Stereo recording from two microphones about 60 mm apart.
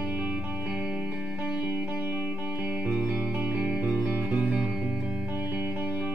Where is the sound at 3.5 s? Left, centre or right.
Centre.